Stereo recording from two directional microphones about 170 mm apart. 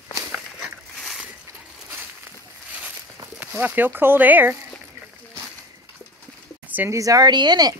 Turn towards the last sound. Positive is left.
turn(degrees=-25)  # may be behind; listen again after turning